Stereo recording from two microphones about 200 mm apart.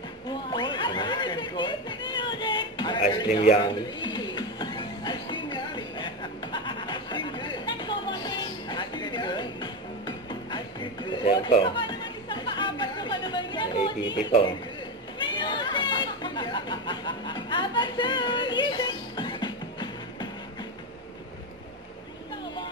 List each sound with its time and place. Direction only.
0.3 s a sound: 20° left (ahead or behind)
3.6 s music: 20° left (ahead or behind)
15.1 s chatter: 25° left (ahead or behind)